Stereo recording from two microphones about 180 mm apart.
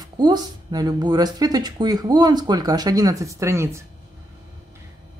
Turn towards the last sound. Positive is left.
turn(degrees=-15)  # may be behind; listen again after turning